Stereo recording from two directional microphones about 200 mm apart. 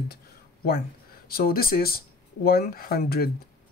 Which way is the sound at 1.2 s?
50° left (ahead or behind).